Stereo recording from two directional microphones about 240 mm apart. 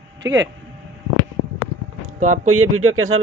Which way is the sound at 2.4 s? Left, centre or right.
Right.